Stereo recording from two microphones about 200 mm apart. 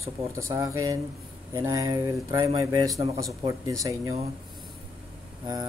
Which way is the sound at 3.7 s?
15° right (ahead or behind).